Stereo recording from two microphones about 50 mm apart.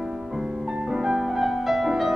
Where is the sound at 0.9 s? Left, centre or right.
Centre.